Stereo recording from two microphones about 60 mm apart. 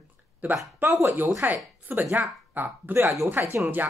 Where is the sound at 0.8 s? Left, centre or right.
Right.